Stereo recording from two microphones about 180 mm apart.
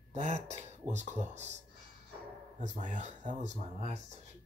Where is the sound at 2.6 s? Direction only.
45° right (ahead or behind).